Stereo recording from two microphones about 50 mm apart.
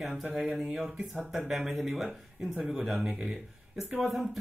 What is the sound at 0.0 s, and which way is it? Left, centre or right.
Speech, centre.